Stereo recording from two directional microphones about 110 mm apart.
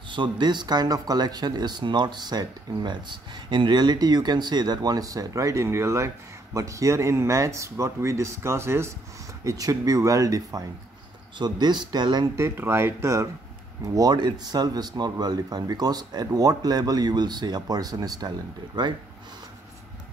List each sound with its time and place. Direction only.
0.1 s speech: 45° right (ahead or behind)
11.3 s speech: 40° right (ahead or behind)
12.4 s speech: 25° right (ahead or behind); by 18.9 s 40° right (ahead or behind)